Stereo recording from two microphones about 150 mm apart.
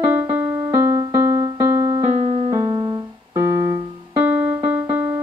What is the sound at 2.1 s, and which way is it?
Music, 45° right (ahead or behind).